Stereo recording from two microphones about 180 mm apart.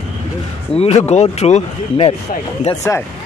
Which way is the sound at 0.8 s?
35° left (ahead or behind).